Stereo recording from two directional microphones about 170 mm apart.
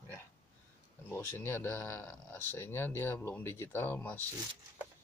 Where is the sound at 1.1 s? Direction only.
15° left (ahead or behind).